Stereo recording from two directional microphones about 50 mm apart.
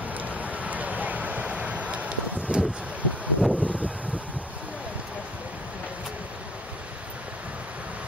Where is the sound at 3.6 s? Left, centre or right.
Right.